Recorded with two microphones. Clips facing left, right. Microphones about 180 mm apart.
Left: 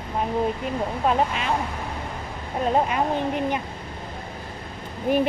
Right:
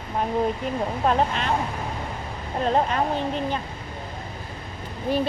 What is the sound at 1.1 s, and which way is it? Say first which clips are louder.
Speech: even; 5° left (ahead or behind).